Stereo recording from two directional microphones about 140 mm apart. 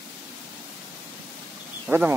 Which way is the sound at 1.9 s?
15° right (ahead or behind).